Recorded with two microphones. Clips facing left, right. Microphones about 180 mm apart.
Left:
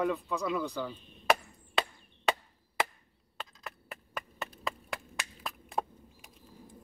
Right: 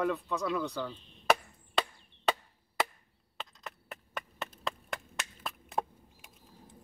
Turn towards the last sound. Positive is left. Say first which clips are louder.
# left 3 dB
turn(degrees=0)  # may be behind; listen again after turning